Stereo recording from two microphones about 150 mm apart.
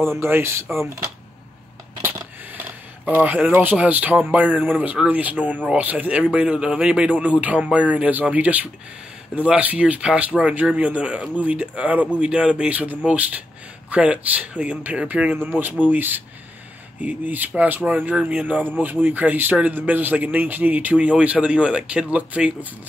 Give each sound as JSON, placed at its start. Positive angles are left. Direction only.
{"t": 0.0, "sound": "speech", "side_deg": -15}
{"t": 2.0, "sound": "a sound", "side_deg": -15}
{"t": 3.1, "sound": "speech", "side_deg": -10}